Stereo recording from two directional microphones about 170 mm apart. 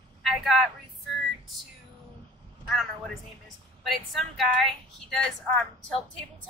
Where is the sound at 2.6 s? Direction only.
Centre (ahead or behind).